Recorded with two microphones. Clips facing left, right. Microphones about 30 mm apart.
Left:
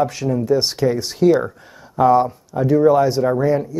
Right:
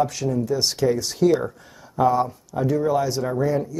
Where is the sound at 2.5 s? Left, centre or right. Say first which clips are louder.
Left 7 dB; left.